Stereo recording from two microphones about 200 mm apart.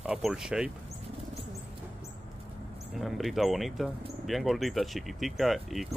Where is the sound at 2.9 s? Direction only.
Centre (ahead or behind).